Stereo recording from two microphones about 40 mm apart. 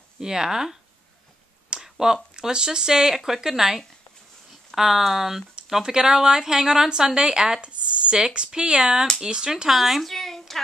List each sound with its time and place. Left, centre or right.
0.2 s speech: centre
1.8 s a sound: centre
2.3 s speech: centre
7.6 s speech: right
9.7 s speech: centre
10.1 s a sound: centre